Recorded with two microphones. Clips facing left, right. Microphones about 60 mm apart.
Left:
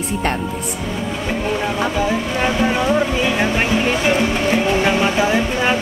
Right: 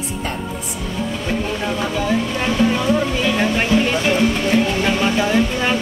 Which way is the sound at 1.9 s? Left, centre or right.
Centre.